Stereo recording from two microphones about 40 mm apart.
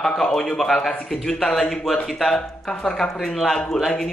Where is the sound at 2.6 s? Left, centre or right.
Centre.